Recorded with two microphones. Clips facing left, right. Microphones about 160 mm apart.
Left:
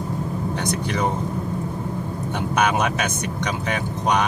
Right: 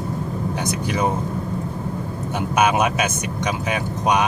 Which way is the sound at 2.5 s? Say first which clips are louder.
Right 3 dB; 10° right (ahead or behind).